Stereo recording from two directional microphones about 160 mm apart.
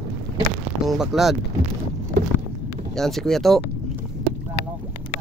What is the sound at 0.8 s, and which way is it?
Speech, centre (ahead or behind).